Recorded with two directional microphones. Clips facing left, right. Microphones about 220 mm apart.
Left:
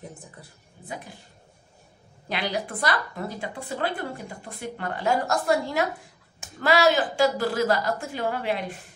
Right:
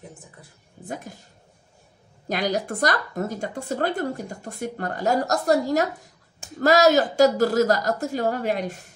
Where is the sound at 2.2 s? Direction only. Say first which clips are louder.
Right 4 dB; 45° right (ahead or behind).